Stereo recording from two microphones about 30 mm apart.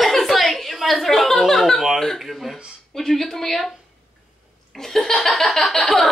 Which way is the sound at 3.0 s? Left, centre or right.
Centre.